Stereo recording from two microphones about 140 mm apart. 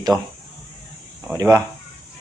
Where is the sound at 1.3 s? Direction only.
20° right (ahead or behind).